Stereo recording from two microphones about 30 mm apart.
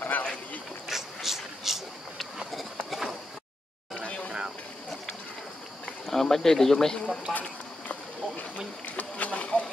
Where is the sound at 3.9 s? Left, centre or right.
Left.